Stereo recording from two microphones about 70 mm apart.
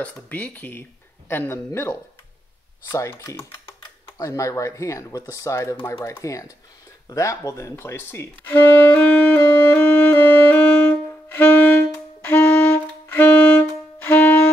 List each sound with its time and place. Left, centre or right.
0.0 s speech: left
1.7 s speech: left
7.7 s speech: left
9.4 s music: left